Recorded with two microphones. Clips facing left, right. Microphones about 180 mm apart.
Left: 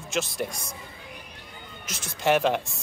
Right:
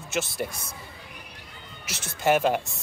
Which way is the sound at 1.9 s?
65° right (ahead or behind).